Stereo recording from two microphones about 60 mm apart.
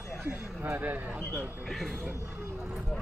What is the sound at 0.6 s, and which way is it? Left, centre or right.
Speech, right.